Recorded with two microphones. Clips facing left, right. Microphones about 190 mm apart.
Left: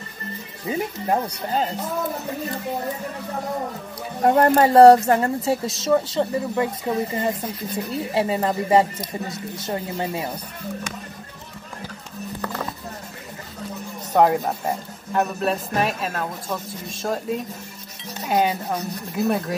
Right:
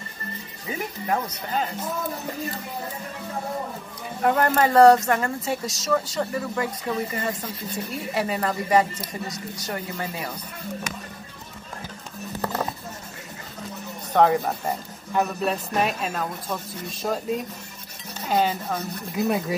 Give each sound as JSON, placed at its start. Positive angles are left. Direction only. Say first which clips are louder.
{"t": 0.7, "sound": "speech", "louder": "left 4 dB", "side_deg": 30}
{"t": 4.2, "sound": "a woman's voice", "louder": "left 4 dB", "side_deg": 30}
{"t": 14.1, "sound": "a man's voice", "louder": "left 1 dB", "side_deg": 5}